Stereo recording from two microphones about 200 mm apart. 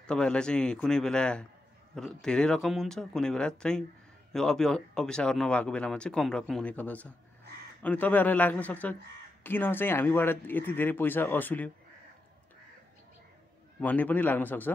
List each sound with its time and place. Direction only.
0.0 s speech: 5° left (ahead or behind)
13.7 s speech: 10° left (ahead or behind)